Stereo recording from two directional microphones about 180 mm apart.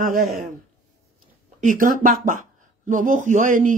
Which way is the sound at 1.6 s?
45° right (ahead or behind).